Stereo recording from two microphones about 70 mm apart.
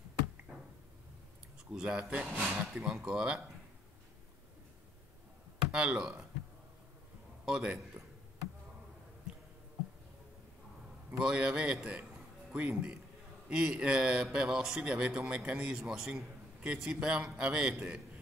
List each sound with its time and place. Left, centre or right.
1.7 s a man's voice: centre
5.7 s a man's voice: centre
7.4 s a man's voice: centre
8.0 s a sound: right
11.1 s a man's voice: centre